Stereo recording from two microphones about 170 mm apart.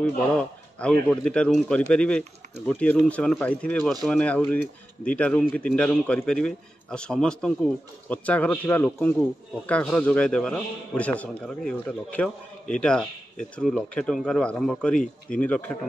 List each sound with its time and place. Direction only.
0.0 s a man's voice: 5° left (ahead or behind)